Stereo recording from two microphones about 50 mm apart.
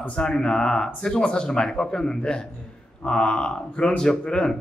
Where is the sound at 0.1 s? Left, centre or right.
Centre.